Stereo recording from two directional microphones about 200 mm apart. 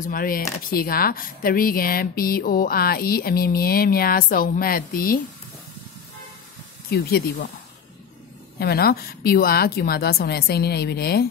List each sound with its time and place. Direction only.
0.0 s speech: 45° left (ahead or behind)
6.9 s speech: 50° left (ahead or behind)
8.5 s speech: 50° left (ahead or behind)